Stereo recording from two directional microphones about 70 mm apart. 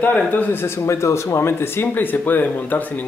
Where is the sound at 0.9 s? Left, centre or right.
Left.